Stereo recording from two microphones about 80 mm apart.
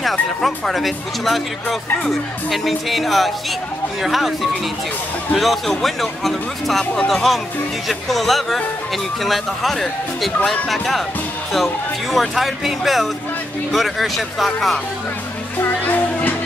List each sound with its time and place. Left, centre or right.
0.0 s speech: centre
15.6 s music: left